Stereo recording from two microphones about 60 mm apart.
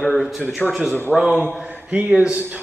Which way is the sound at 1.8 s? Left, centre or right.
Centre.